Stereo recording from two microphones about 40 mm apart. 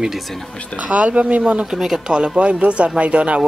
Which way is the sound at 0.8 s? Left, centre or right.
Right.